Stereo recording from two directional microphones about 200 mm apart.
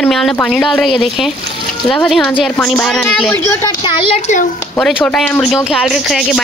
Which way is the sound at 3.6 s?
25° left (ahead or behind).